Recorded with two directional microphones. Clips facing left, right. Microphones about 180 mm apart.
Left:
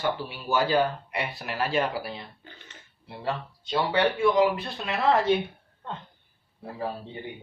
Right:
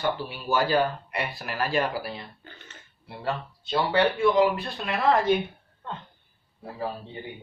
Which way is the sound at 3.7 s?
10° left (ahead or behind).